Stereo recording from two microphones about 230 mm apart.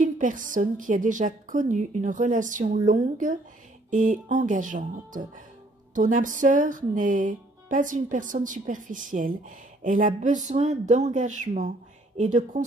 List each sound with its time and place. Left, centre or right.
0.0 s speech: right